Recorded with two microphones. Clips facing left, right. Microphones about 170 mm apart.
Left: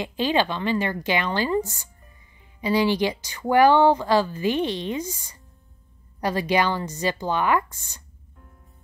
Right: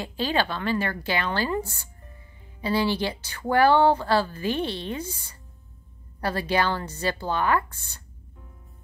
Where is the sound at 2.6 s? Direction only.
15° left (ahead or behind).